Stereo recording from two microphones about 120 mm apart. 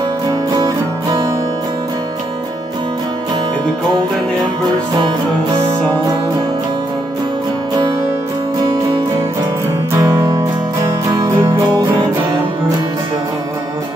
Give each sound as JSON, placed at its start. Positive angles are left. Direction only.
{"t": 4.6, "sound": "music", "side_deg": -40}
{"t": 10.1, "sound": "music", "side_deg": -25}